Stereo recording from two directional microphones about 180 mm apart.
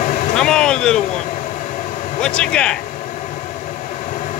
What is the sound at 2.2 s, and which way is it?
Speech, 5° left (ahead or behind).